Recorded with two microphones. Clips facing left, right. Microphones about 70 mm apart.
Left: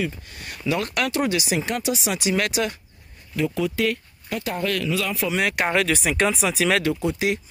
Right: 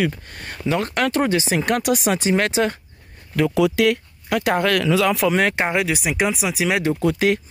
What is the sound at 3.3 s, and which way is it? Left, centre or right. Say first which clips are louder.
Speech: right 6 dB; right.